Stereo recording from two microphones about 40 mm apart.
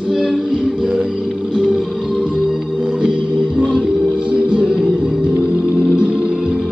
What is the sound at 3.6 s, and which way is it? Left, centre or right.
Music, right.